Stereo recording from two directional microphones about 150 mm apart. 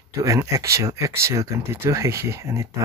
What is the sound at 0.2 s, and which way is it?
Speech, 20° right (ahead or behind).